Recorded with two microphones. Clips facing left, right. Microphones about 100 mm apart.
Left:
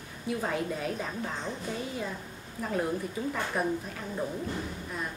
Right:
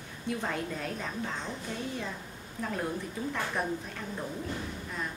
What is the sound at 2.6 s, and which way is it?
A woman's voice, 5° left (ahead or behind).